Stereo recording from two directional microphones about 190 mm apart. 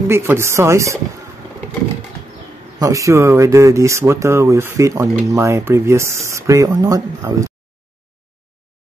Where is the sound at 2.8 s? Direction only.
15° right (ahead or behind).